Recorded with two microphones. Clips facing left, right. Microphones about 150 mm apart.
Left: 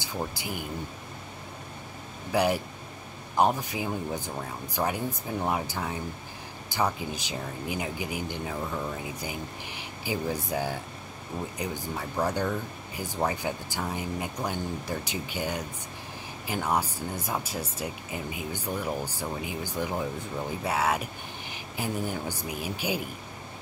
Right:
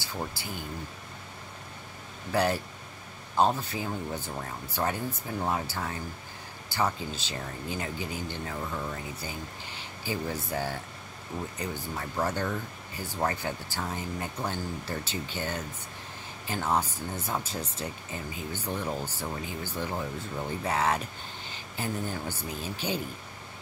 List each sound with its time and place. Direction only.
0.0 s speech: 15° left (ahead or behind)
2.3 s speech: 15° left (ahead or behind)